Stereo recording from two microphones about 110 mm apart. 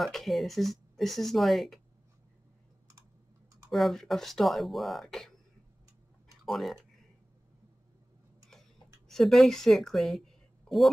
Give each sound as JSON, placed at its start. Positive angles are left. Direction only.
{"t": 0.0, "sound": "speech", "side_deg": 0}
{"t": 3.7, "sound": "speech", "side_deg": 0}
{"t": 6.4, "sound": "speech", "side_deg": 0}
{"t": 9.1, "sound": "speech", "side_deg": 0}